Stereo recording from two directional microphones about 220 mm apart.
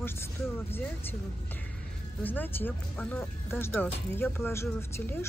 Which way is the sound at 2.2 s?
10° left (ahead or behind).